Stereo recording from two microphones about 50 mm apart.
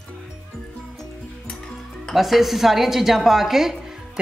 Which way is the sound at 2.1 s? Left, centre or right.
Centre.